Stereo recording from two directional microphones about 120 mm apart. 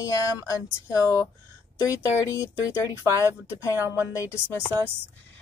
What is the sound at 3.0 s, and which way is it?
Speech, 25° left (ahead or behind).